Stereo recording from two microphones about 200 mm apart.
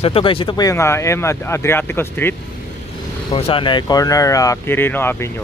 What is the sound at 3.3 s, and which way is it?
Speech, 25° left (ahead or behind).